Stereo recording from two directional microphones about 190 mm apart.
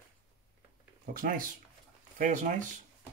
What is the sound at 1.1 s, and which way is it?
Speech, 45° right (ahead or behind).